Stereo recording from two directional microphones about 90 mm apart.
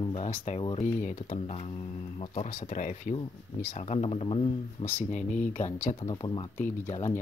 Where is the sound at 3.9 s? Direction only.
90° left.